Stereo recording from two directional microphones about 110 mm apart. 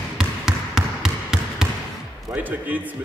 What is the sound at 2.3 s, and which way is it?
Speech, 15° right (ahead or behind).